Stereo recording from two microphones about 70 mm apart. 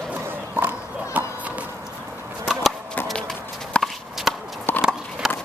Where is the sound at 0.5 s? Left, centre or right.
Right.